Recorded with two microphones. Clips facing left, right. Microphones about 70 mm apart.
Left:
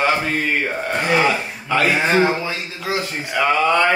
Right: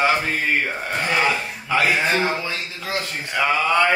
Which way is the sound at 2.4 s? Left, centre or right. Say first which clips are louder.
Left 3 dB; centre.